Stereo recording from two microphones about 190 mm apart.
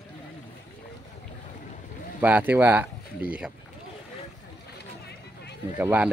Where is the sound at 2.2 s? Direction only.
10° right (ahead or behind).